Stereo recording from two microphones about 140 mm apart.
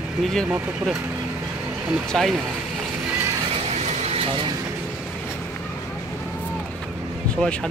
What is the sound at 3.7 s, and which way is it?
Vehicle, 50° right (ahead or behind).